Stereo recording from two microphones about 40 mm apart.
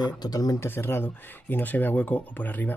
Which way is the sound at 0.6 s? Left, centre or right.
Left.